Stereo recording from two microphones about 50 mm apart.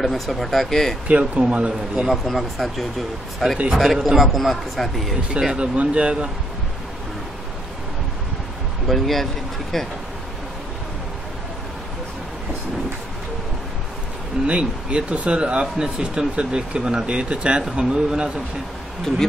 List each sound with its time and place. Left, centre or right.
0.0 s a man's voice: centre
1.0 s speech: right
2.2 s a man's voice: centre
3.7 s a man's voice: centre
5.3 s speech: centre
8.8 s speech: centre
14.4 s speech: centre
19.1 s speech: centre